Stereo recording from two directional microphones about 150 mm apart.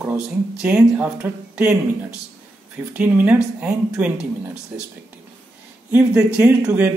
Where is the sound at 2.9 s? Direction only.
10° right (ahead or behind).